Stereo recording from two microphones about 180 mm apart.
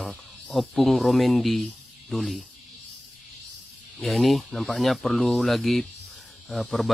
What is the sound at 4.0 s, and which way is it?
Speech, centre (ahead or behind).